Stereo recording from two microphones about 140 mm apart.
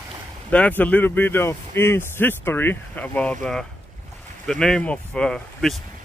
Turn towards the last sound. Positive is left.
turn(degrees=5)  # may be behind; listen again after turning